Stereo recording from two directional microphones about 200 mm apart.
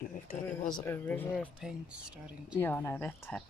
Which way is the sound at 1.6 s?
5° right (ahead or behind).